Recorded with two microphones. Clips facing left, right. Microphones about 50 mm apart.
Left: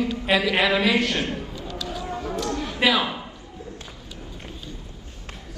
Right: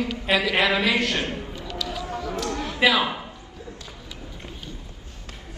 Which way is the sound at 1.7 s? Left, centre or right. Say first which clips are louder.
Right 1 dB; left.